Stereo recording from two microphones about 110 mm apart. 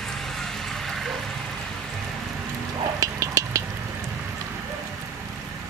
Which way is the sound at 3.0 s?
30° right (ahead or behind).